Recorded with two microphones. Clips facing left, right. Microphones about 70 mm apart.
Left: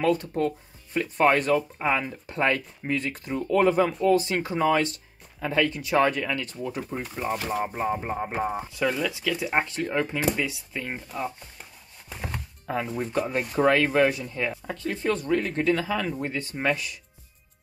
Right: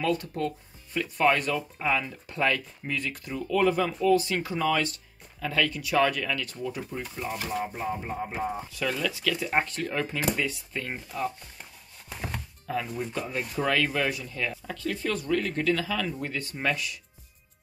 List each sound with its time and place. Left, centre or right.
0.0 s speech: left
7.2 s speech: left
8.7 s speech: left
12.1 s music: centre
12.6 s speech: left